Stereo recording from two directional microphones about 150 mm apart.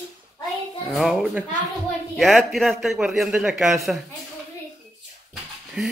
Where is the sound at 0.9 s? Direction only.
Centre (ahead or behind).